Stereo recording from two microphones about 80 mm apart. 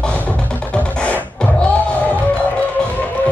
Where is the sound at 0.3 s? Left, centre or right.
Centre.